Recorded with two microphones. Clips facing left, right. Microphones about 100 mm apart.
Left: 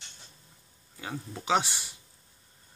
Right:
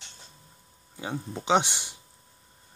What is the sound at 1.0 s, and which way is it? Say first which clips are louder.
Speech: right 4 dB; 25° right (ahead or behind).